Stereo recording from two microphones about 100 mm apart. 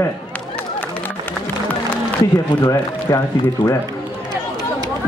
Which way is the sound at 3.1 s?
35° left (ahead or behind).